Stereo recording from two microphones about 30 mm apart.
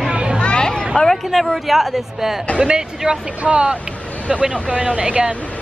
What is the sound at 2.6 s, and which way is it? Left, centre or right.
Speech, right.